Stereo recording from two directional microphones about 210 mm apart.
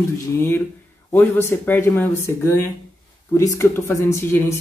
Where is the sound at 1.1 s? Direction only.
10° left (ahead or behind).